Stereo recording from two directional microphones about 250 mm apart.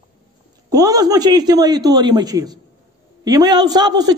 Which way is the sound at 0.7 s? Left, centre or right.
Centre.